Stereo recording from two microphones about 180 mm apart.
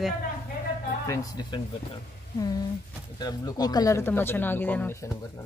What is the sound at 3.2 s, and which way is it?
Speech, 20° left (ahead or behind).